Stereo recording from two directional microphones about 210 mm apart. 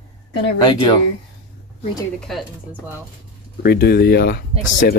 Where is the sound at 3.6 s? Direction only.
45° left (ahead or behind).